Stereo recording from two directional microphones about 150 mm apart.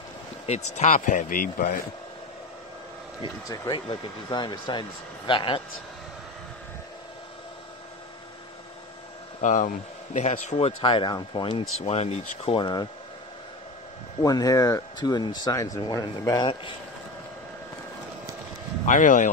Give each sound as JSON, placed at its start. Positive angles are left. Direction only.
{"t": 0.5, "sound": "speech", "side_deg": 50}
{"t": 3.2, "sound": "speech", "side_deg": 20}
{"t": 9.4, "sound": "speech", "side_deg": 60}
{"t": 10.8, "sound": "speech", "side_deg": 35}
{"t": 12.5, "sound": "speech", "side_deg": 30}
{"t": 14.2, "sound": "speech", "side_deg": 25}
{"t": 18.9, "sound": "speech", "side_deg": 60}